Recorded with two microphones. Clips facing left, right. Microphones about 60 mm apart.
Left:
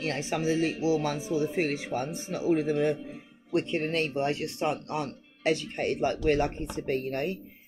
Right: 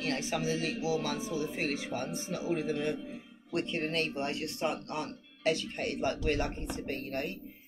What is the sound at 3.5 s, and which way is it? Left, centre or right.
A man's voice, left.